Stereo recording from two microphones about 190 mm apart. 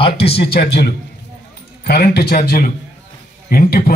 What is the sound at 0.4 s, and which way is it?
A man's voice, 60° left (ahead or behind).